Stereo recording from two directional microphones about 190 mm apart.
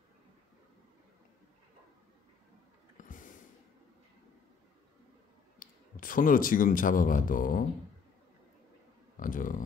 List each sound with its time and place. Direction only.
3.0 s snort: 45° left (ahead or behind)
5.6 s speech: 45° left (ahead or behind)
9.1 s speech: 45° left (ahead or behind)